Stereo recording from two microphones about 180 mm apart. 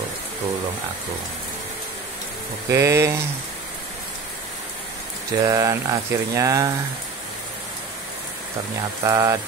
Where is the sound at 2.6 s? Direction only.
15° right (ahead or behind).